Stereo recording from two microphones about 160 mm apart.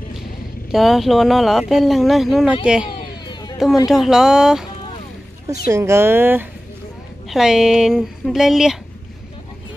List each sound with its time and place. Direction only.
0.7 s speech: centre (ahead or behind)
3.3 s a sound: 25° left (ahead or behind)
3.8 s speech: centre (ahead or behind)
5.7 s speech: 15° right (ahead or behind)
7.2 s speech: 5° right (ahead or behind)